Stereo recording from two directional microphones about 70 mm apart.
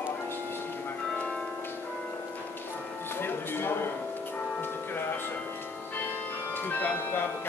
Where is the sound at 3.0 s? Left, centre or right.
Left.